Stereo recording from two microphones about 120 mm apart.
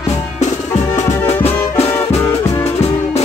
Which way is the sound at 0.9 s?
65° left (ahead or behind).